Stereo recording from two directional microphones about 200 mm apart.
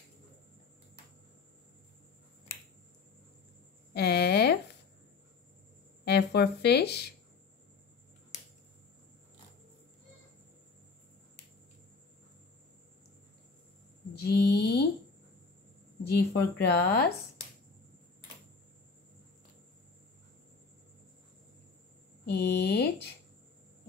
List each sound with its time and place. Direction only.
3.9 s a sound: 55° left (ahead or behind)
6.0 s speech: 55° left (ahead or behind)
14.1 s mantra: 55° left (ahead or behind)
16.1 s a woman's voice: 55° left (ahead or behind)
22.2 s a woman's voice: 55° left (ahead or behind)